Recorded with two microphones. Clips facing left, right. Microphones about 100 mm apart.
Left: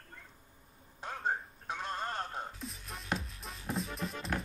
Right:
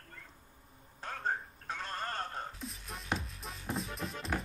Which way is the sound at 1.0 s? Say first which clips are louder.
Left 1 dB; 15° left (ahead or behind).